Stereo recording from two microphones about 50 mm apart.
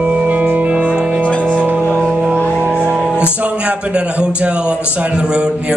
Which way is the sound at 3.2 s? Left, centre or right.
Right.